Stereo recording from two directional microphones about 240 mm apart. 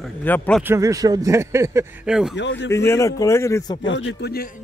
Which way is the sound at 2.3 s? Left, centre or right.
Left.